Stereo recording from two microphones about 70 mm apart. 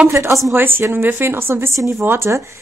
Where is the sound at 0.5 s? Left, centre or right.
Right.